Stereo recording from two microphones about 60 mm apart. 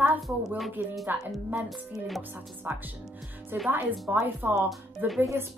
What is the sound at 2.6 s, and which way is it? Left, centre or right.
A woman's voice, right.